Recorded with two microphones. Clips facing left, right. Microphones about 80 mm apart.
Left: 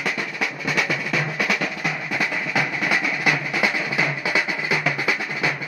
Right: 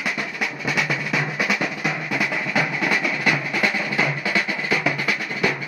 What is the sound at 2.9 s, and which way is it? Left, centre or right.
Music, centre.